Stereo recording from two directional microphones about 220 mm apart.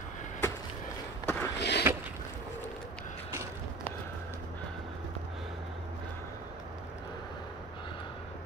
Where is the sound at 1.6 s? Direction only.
50° left (ahead or behind).